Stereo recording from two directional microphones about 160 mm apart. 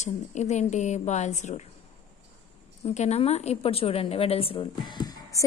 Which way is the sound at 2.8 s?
45° left (ahead or behind).